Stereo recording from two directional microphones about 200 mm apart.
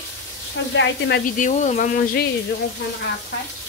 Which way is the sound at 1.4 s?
35° left (ahead or behind).